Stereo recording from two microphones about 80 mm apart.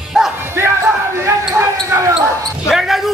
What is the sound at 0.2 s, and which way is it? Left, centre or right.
Music, centre.